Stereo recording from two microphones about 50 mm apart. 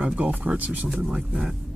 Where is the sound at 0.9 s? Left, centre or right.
Centre.